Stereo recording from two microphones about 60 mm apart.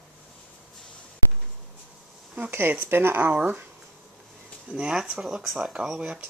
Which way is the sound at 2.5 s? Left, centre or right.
Right.